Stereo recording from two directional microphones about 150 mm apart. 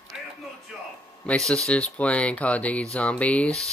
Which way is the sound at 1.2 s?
5° left (ahead or behind).